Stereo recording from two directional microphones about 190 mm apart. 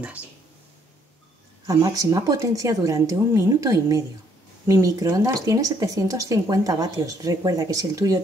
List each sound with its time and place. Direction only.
1.7 s speech: 20° right (ahead or behind)